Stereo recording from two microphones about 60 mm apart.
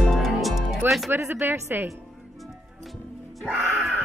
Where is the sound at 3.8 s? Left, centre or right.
Centre.